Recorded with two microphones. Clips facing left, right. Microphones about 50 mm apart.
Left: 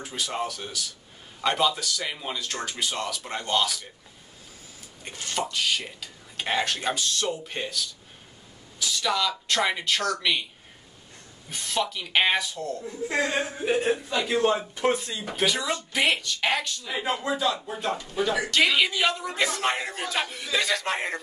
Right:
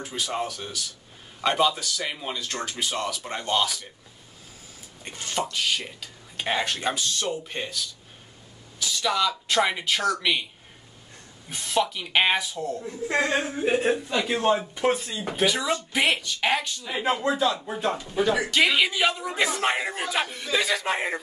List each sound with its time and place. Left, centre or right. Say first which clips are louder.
0.0 s speech: right 1 dB; centre
5.0 s speech: right 1 dB; centre
8.7 s a sound: right 1 dB; centre
9.5 s speech: right 1 dB; centre
11.5 s speech: right 3 dB; centre
13.1 s a man's voice: right 2 dB; right
14.3 s speech: even; centre